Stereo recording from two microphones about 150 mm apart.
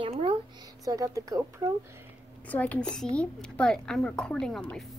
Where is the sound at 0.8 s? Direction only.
25° right (ahead or behind).